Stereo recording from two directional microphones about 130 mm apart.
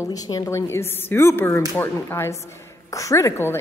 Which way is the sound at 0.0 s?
30° left (ahead or behind).